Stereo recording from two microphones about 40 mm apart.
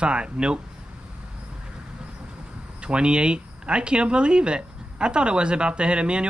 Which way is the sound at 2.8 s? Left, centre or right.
Right.